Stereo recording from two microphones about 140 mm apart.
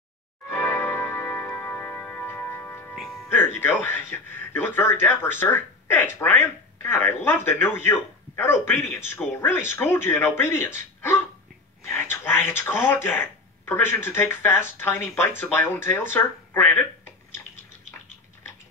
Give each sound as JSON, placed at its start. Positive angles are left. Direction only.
{"t": 0.5, "sound": "a sound", "side_deg": 15}
{"t": 3.0, "sound": "music", "side_deg": 5}
{"t": 3.3, "sound": "speech", "side_deg": 15}